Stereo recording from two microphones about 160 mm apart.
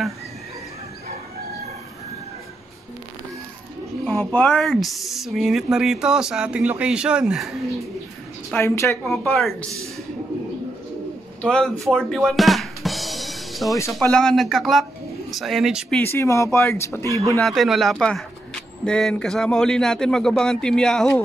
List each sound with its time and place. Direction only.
4.0 s speech: 10° left (ahead or behind)
8.5 s speech: 15° left (ahead or behind)
9.0 s speech: 5° left (ahead or behind)
11.4 s music: 5° left (ahead or behind)
13.9 s speech: 5° left (ahead or behind)
16.0 s speech: 15° left (ahead or behind)
17.4 s speech: centre (ahead or behind)